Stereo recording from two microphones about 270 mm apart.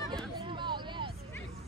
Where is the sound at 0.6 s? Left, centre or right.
Centre.